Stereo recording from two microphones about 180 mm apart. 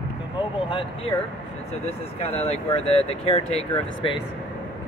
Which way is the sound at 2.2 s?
35° left (ahead or behind).